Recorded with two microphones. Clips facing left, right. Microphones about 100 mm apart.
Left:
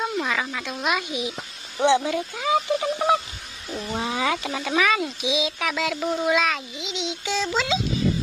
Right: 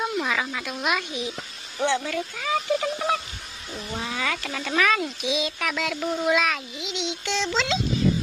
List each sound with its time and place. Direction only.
0.0 s a sound: centre (ahead or behind)
1.1 s a child's voice: 15° left (ahead or behind)
4.6 s a child's voice: 5° left (ahead or behind)